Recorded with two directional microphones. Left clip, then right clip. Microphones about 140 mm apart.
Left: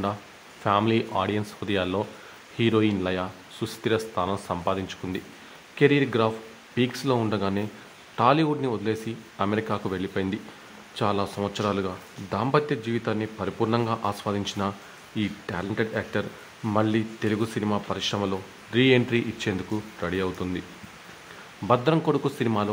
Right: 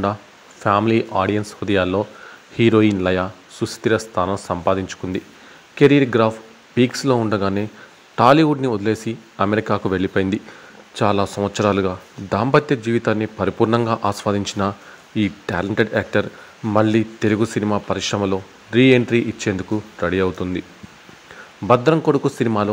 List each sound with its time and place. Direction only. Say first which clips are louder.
0.7 s speech: right 6 dB; 40° right (ahead or behind)
21.6 s speech: right 7 dB; 40° right (ahead or behind)